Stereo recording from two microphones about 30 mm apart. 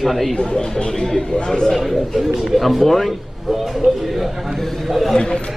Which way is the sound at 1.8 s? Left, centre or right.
Centre.